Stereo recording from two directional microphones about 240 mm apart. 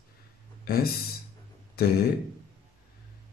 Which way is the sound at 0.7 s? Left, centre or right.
Left.